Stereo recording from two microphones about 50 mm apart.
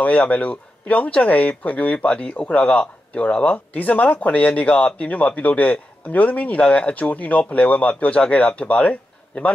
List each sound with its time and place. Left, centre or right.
0.0 s a man's voice: left